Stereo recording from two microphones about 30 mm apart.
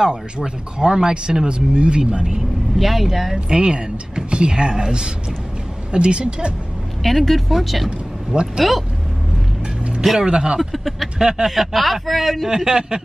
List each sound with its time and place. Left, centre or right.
0.0 s speech: right
2.8 s speech: centre
3.4 s speech: right
7.0 s speech: centre
10.2 s speech: right
10.6 s speech: centre
11.1 s speech: right
11.4 s speech: centre
12.4 s speech: right